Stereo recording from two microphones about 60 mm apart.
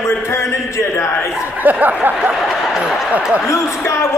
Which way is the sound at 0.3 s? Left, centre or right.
Left.